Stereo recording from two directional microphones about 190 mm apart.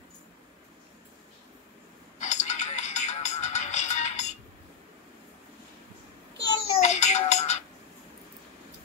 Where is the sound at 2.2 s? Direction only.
40° left (ahead or behind).